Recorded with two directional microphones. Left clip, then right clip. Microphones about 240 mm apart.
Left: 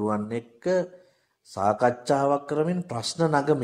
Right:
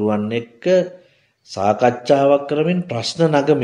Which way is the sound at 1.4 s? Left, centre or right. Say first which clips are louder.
Right 7 dB; left.